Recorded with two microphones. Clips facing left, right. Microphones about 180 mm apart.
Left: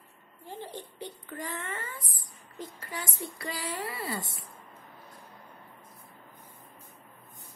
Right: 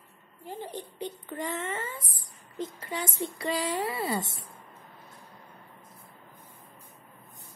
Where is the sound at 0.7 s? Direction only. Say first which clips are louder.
Right 4 dB; 15° right (ahead or behind).